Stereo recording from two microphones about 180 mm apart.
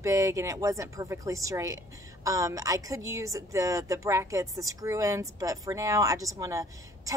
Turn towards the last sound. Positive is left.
turn(degrees=-20)  # may be behind; listen again after turning